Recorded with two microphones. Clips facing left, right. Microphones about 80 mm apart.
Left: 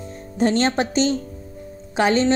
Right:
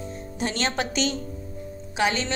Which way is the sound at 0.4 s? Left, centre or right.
Left.